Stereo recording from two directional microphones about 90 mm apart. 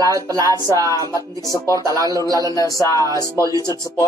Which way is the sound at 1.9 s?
40° right (ahead or behind).